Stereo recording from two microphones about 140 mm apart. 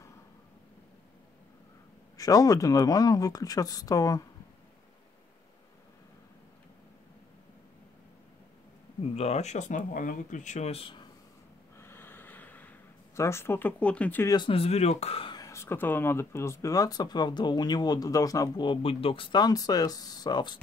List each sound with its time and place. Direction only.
2.1 s speech: 25° left (ahead or behind)
9.0 s speech: 50° left (ahead or behind)
11.8 s gasp: 15° left (ahead or behind)
14.2 s speech: 30° left (ahead or behind)
14.5 s speech: 45° left (ahead or behind)
15.3 s speech: 20° left (ahead or behind)